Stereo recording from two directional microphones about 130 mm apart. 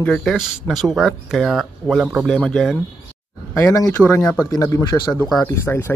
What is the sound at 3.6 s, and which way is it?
Speech, 25° left (ahead or behind).